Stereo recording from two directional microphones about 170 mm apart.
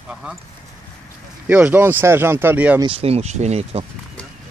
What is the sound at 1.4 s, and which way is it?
Speech, 10° right (ahead or behind).